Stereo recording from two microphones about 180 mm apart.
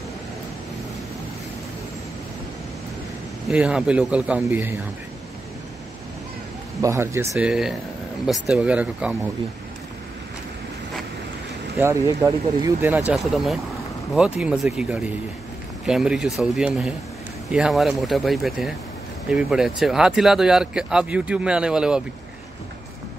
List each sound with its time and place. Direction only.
3.4 s speech: 5° right (ahead or behind)
6.8 s speech: 15° right (ahead or behind)
7.3 s speech: 5° right (ahead or behind)
11.8 s speech: 15° right (ahead or behind)